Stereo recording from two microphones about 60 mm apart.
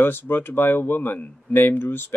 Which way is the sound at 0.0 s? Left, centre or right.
Left.